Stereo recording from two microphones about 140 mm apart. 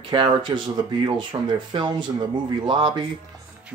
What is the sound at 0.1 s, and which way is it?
Speech, 35° right (ahead or behind).